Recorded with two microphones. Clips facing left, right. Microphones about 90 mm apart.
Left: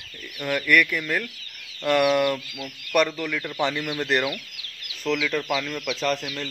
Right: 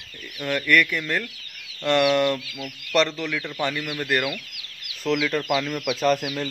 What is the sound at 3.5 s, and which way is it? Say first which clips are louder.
Speech: left 3 dB; 20° left (ahead or behind).